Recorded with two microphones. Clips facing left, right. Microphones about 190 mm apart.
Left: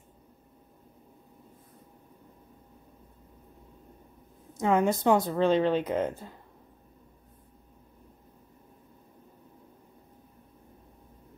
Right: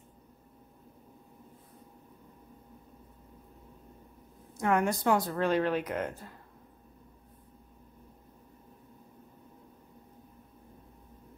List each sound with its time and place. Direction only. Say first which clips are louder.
4.6 s speech: left 3 dB; 20° left (ahead or behind)